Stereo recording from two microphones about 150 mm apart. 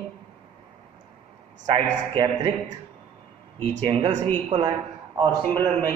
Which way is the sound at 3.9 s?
35° right (ahead or behind).